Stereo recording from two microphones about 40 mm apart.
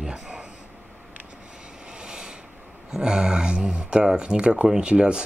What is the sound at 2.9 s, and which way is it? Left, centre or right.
Speech, right.